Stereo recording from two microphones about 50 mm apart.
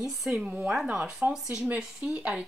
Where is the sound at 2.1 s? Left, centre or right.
Right.